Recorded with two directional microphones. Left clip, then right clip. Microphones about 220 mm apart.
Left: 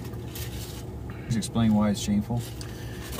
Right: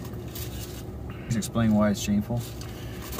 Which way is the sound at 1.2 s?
20° right (ahead or behind).